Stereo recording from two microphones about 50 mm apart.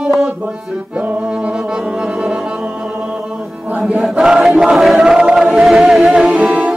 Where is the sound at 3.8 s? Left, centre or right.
Right.